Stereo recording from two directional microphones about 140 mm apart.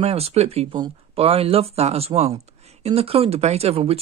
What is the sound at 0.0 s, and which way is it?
Speech, 45° right (ahead or behind).